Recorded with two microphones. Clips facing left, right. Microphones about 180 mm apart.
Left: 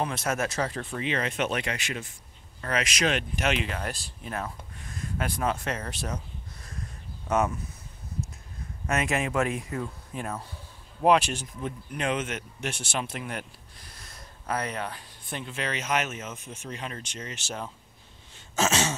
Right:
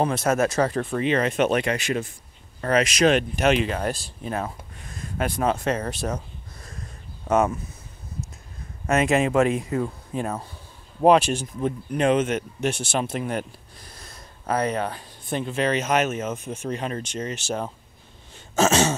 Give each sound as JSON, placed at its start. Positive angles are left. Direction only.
{"t": 0.0, "sound": "speech", "side_deg": -45}
{"t": 5.9, "sound": "speech", "side_deg": -45}
{"t": 7.2, "sound": "speech", "side_deg": -50}
{"t": 8.8, "sound": "speech", "side_deg": -25}
{"t": 13.0, "sound": "speech", "side_deg": -30}
{"t": 14.5, "sound": "speech", "side_deg": -35}